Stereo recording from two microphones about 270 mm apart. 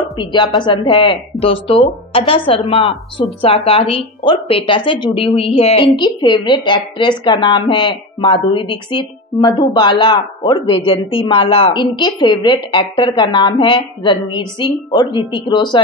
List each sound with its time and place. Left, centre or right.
0.2 s a woman's voice: centre